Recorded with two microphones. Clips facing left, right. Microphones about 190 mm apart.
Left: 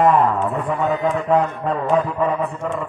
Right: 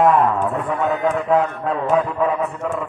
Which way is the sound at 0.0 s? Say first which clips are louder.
Even; centre (ahead or behind).